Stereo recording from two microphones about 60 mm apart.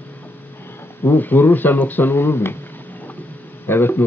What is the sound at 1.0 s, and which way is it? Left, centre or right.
Speech, left.